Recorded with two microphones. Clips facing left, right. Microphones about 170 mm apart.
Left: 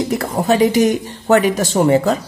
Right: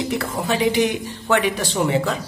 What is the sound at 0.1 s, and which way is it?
Speech, 45° left (ahead or behind).